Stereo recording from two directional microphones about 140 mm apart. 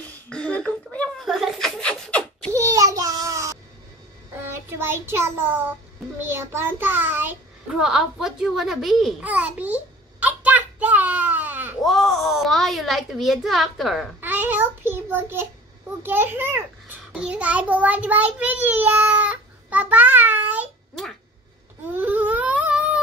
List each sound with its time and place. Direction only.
0.3 s a sound: 5° left (ahead or behind)
2.5 s a sound: 20° right (ahead or behind)
4.4 s child singing: 15° right (ahead or behind)
6.1 s a child's voice: 15° right (ahead or behind)
7.7 s a woman's voice: centre (ahead or behind)
10.2 s a sound: 10° right (ahead or behind)
11.8 s a child's voice: centre (ahead or behind)
14.2 s child singing: 15° right (ahead or behind)
16.0 s a child's voice: 15° right (ahead or behind)
17.2 s child singing: 10° right (ahead or behind)
21.9 s baby cry: 10° right (ahead or behind)